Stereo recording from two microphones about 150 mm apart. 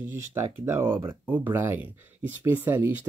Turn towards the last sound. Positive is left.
turn(degrees=-15)  # may be behind; listen again after turning